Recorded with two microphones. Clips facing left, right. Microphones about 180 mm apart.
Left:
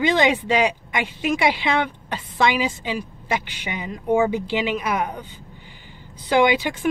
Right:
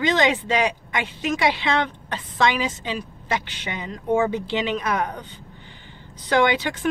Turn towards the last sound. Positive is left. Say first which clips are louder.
# left 2 dB
turn(degrees=10)  # may be behind; listen again after turning